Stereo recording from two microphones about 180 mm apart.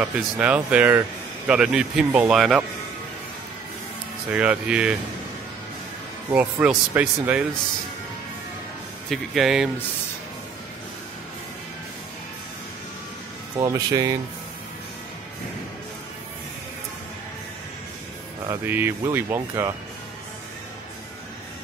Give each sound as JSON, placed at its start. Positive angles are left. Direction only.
{"t": 0.0, "sound": "speech", "side_deg": -5}
{"t": 4.3, "sound": "speech", "side_deg": -5}
{"t": 6.3, "sound": "speech", "side_deg": -5}
{"t": 9.1, "sound": "speech", "side_deg": 0}
{"t": 13.6, "sound": "speech", "side_deg": -20}
{"t": 18.4, "sound": "speech", "side_deg": -15}